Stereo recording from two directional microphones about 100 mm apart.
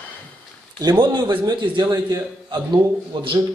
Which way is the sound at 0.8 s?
45° right (ahead or behind).